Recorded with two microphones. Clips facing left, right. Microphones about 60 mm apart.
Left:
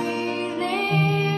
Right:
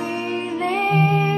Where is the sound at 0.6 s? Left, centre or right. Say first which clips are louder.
Right 5 dB; centre.